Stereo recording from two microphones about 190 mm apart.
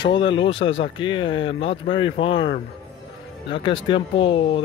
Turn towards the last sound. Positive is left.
turn(degrees=25)  # may be behind; listen again after turning